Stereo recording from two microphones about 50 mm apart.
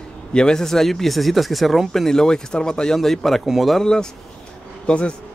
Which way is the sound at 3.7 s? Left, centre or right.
Centre.